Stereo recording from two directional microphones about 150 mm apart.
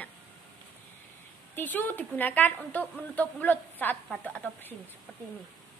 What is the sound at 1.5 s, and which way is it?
Speech, 15° left (ahead or behind).